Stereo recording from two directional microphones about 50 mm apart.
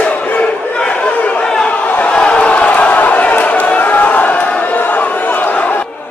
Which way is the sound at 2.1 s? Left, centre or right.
Left.